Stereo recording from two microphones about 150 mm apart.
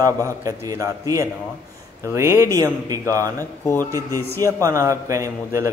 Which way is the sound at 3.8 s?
25° right (ahead or behind).